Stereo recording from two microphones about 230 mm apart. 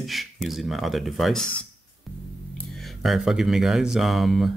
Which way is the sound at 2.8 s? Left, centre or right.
Centre.